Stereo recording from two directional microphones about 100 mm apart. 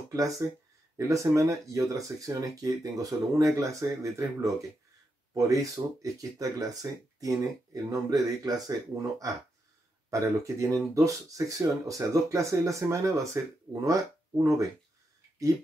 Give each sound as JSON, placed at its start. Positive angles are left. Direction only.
{"t": 0.1, "sound": "speech", "side_deg": -35}
{"t": 10.0, "sound": "speech", "side_deg": -30}